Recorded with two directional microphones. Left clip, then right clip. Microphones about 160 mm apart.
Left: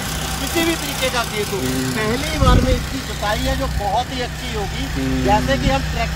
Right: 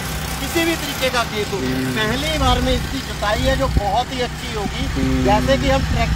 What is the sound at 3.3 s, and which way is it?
Speech, 15° right (ahead or behind).